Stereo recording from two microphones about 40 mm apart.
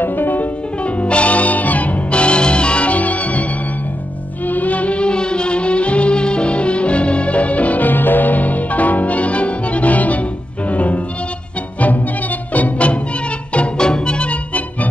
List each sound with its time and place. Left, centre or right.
0.0 s music: left
0.8 s music: left
4.5 s music: left